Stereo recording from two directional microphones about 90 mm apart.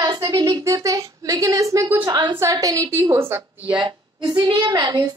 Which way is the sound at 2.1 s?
55° right (ahead or behind).